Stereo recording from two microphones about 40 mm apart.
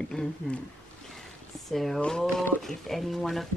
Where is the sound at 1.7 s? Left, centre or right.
Centre.